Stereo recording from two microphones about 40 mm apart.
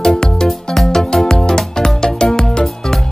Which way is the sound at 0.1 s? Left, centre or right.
Centre.